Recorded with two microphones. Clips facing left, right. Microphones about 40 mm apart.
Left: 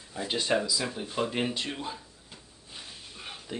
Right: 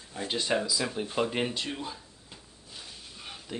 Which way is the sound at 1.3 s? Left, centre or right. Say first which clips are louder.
Even; centre.